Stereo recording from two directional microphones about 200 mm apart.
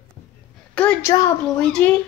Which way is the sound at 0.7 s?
5° left (ahead or behind).